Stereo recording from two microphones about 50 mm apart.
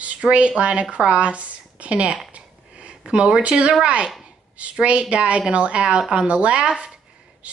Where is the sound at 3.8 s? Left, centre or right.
Right.